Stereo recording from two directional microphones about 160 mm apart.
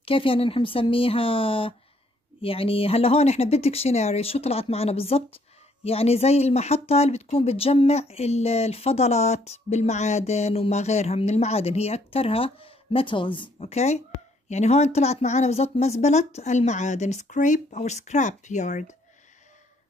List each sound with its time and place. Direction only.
0.0 s speech: 35° left (ahead or behind)